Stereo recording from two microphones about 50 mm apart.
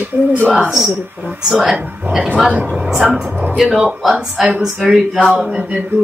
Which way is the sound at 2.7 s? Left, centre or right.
Centre.